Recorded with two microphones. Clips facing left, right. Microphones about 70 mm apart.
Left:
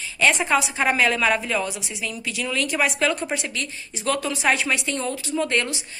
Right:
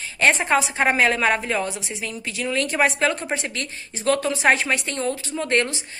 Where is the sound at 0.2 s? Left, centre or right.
Right.